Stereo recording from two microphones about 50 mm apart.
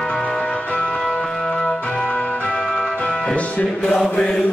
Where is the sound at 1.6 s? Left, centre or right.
Centre.